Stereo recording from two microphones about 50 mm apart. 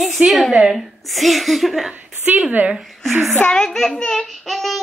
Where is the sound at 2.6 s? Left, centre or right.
Right.